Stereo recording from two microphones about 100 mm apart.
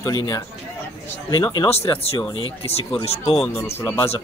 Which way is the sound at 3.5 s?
25° left (ahead or behind).